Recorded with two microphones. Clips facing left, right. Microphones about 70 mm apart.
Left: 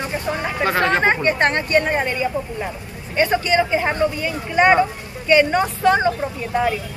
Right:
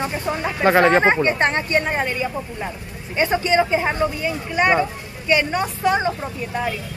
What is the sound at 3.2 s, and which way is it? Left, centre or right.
Speech, right.